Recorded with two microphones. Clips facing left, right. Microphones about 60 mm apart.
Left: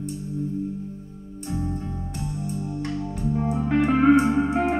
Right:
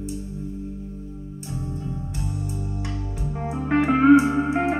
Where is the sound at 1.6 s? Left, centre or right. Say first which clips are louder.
Left 1 dB; left.